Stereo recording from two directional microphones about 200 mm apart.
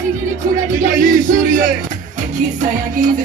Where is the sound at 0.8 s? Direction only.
40° right (ahead or behind).